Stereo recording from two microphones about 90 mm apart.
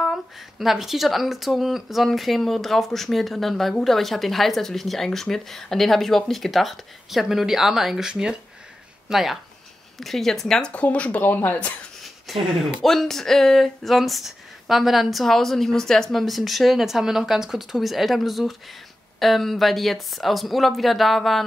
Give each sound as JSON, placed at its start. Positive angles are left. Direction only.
{"t": 0.0, "sound": "speech", "side_deg": 0}
{"t": 10.7, "sound": "speech", "side_deg": 15}
{"t": 12.0, "sound": "speech", "side_deg": 0}